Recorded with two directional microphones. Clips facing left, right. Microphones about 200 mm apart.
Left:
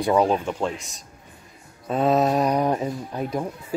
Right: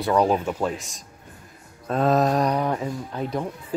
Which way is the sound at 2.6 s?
20° left (ahead or behind).